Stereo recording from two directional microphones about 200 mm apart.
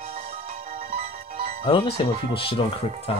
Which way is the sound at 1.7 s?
25° left (ahead or behind).